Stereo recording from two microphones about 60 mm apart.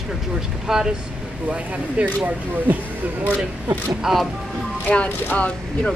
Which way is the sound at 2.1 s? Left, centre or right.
Right.